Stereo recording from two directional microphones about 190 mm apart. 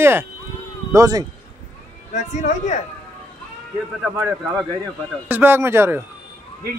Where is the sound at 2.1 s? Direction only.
40° left (ahead or behind).